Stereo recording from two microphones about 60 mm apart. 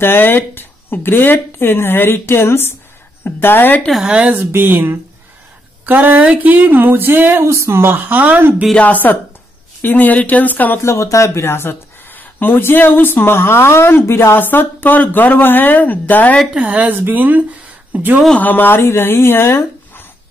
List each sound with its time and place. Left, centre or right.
0.0 s speech: left
4.0 s speech: centre
4.5 s speech: right
7.5 s speech: right
8.7 s speech: left
10.8 s speech: left
16.5 s speech: right
18.4 s speech: left